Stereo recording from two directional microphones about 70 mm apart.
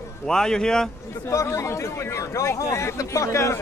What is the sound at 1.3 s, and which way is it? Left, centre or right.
Speech, left.